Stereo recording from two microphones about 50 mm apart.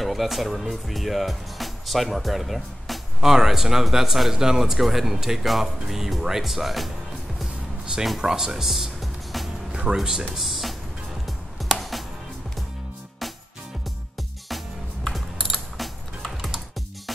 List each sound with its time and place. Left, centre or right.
0.0 s speech: centre
7.8 s a sound: centre
8.2 s music: centre
9.7 s music: centre
9.9 s speech: centre
10.3 s music: centre
13.2 s music: centre
14.5 s music: centre
15.0 s typing: centre
16.4 s music: centre